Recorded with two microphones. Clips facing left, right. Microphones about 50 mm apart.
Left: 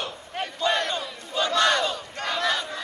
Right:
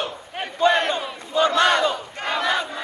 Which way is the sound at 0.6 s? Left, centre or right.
Right.